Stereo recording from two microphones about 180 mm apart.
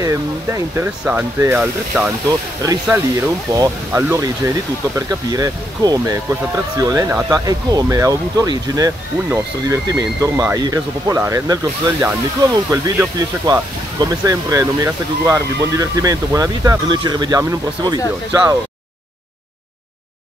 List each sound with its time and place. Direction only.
0.0 s speech: 20° right (ahead or behind)
2.2 s speech: 20° right (ahead or behind)